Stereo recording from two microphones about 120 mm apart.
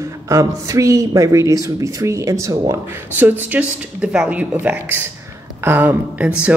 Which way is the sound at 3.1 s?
15° right (ahead or behind).